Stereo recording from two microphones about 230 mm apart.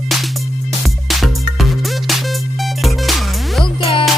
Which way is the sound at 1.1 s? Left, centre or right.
Centre.